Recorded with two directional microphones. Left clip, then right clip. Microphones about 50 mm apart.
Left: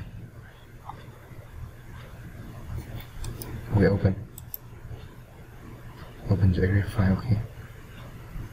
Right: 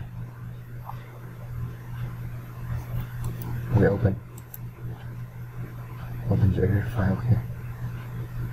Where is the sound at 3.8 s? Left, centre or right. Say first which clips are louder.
Right 1 dB; centre.